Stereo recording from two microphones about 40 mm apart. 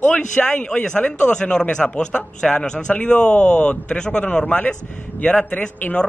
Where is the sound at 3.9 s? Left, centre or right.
Left.